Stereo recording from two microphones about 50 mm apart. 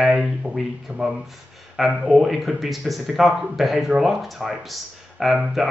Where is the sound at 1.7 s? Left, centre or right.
Centre.